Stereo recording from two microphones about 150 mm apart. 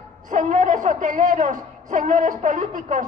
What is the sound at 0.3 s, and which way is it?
A man's voice, 55° right (ahead or behind).